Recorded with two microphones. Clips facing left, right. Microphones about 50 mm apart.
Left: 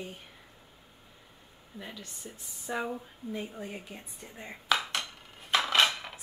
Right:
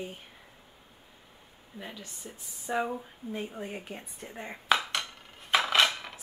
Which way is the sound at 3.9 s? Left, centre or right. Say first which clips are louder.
Right 4 dB; right.